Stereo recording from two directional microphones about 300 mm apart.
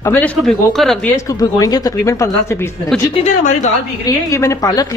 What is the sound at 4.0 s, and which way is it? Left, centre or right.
Speech, centre.